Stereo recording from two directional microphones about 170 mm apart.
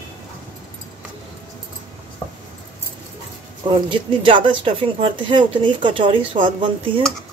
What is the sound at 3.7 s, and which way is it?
Speech, 30° right (ahead or behind).